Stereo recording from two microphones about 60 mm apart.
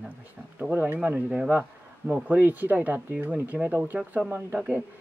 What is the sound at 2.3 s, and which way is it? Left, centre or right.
Speech, right.